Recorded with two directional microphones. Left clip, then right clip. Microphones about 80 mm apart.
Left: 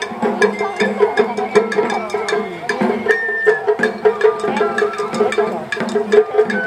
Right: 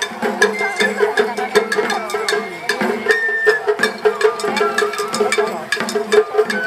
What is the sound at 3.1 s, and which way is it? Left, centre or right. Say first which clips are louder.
Music: right 1 dB; centre.